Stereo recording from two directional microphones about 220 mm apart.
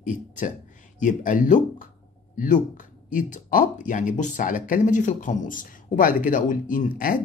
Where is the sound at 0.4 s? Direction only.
35° left (ahead or behind).